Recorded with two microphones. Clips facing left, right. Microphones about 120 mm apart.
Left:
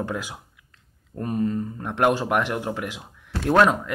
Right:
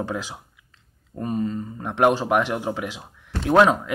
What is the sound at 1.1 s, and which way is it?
Speech, 15° right (ahead or behind).